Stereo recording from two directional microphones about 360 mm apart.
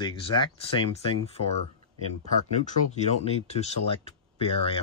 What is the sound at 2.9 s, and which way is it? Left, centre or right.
Speech, centre.